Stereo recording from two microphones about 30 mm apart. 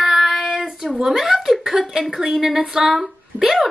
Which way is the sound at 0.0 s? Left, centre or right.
Centre.